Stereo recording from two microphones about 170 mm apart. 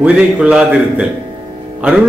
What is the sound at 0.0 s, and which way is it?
A man's voice, 5° right (ahead or behind).